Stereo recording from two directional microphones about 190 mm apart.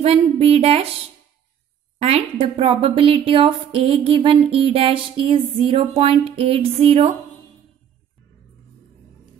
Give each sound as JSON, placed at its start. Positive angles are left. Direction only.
{"t": 0.0, "sound": "speech", "side_deg": -30}
{"t": 2.0, "sound": "a woman's voice", "side_deg": -35}